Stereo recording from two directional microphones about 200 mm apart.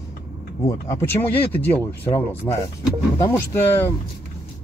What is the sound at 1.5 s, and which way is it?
Speech, 10° left (ahead or behind).